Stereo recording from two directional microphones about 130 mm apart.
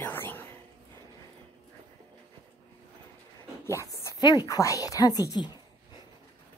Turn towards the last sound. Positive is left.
turn(degrees=30)  # may be behind; listen again after turning